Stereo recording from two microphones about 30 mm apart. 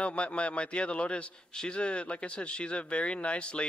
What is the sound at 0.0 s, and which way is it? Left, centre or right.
A man's voice, left.